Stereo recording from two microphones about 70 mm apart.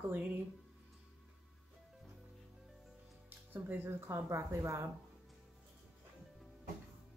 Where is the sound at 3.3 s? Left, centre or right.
Right.